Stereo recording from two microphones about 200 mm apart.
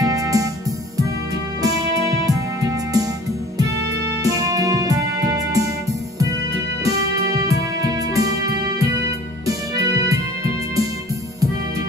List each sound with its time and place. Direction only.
0.0 s music: 15° right (ahead or behind)
1.6 s music: 15° right (ahead or behind)
4.2 s music: 15° right (ahead or behind)
6.8 s music: 20° right (ahead or behind)